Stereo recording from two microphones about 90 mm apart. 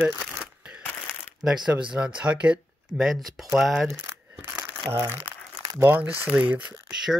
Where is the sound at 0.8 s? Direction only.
25° left (ahead or behind).